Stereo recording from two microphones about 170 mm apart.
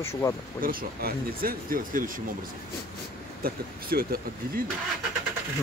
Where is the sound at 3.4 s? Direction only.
60° right (ahead or behind).